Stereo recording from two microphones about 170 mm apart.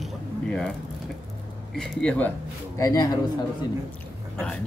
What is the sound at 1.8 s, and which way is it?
Speech, 5° left (ahead or behind).